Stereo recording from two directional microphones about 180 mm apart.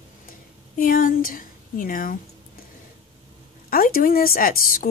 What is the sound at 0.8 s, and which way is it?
A woman's voice, 50° left (ahead or behind).